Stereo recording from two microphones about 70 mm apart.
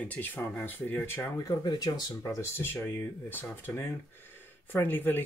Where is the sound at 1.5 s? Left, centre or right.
Left.